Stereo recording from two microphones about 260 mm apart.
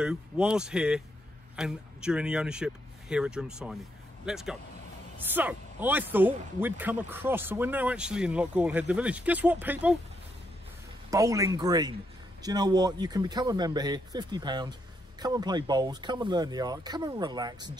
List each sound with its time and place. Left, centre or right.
0.0 s speech: centre
11.1 s speech: centre